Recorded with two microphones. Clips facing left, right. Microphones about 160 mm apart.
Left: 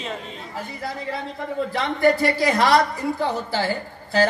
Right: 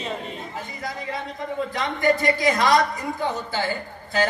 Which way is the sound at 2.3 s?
35° left (ahead or behind).